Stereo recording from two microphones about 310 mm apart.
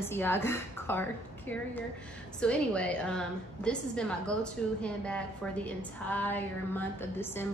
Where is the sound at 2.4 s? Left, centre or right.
Centre.